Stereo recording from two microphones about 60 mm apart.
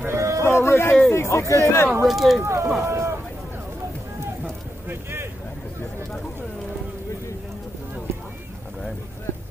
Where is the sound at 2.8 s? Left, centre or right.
Right.